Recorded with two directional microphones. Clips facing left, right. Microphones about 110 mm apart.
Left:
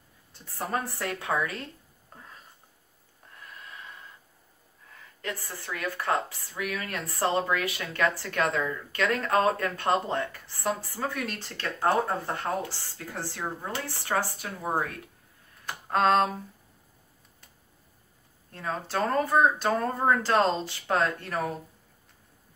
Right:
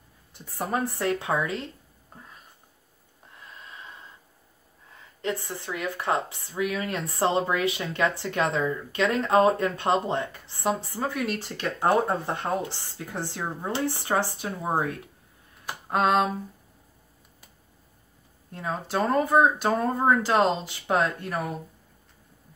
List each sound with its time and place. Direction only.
0.3 s a woman's voice: 15° right (ahead or behind)
3.3 s snort: 20° right (ahead or behind)
5.2 s a woman's voice: 25° right (ahead or behind)
11.1 s a woman's voice: 10° right (ahead or behind)
15.6 s speech: 10° right (ahead or behind)
18.5 s speech: 15° right (ahead or behind)